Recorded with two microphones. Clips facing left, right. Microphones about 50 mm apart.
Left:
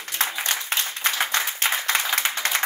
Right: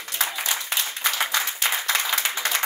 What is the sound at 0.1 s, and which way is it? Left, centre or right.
Applause, left.